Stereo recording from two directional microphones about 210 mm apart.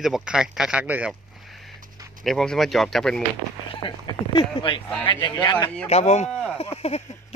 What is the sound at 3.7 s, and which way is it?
Speech, 25° left (ahead or behind).